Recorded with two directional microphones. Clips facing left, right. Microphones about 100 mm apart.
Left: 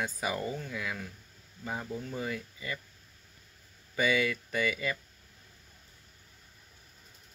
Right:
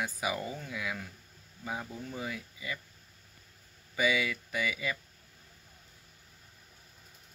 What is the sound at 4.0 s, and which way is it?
Speech, 10° right (ahead or behind).